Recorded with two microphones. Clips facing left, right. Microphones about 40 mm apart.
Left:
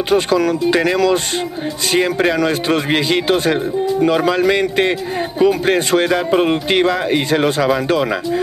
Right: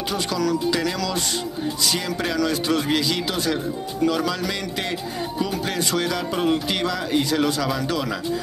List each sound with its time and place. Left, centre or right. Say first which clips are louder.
0.1 s speech: left 9 dB; left